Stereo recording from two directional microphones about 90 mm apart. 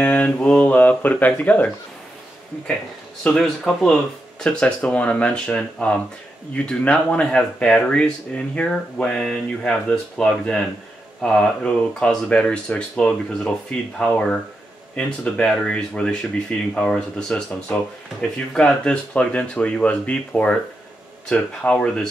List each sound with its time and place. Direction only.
0.0 s speech: 15° left (ahead or behind)
3.3 s speech: 5° left (ahead or behind)